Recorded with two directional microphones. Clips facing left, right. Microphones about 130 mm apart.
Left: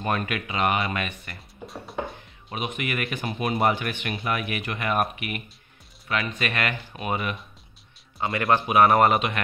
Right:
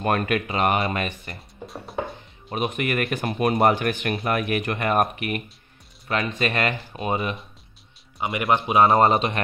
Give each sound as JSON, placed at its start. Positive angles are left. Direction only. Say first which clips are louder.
{"t": 0.0, "sound": "speech", "louder": "right 5 dB", "side_deg": -50}
{"t": 0.5, "sound": "speech", "louder": "even", "side_deg": -35}
{"t": 2.5, "sound": "speech", "louder": "right 5 dB", "side_deg": -45}
{"t": 6.0, "sound": "speech", "louder": "right 3 dB", "side_deg": -30}